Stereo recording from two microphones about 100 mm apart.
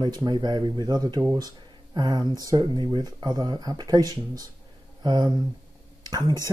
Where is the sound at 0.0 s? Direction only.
45° right (ahead or behind).